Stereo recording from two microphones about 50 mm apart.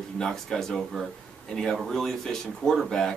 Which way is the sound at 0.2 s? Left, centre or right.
Centre.